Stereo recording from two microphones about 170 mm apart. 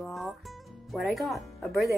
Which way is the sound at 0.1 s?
Centre (ahead or behind).